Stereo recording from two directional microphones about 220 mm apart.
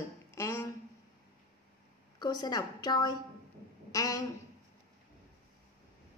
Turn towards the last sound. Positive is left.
turn(degrees=15)  # may be behind; listen again after turning